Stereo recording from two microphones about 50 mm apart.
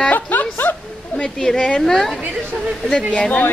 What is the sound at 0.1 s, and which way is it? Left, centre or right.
Snicker, left.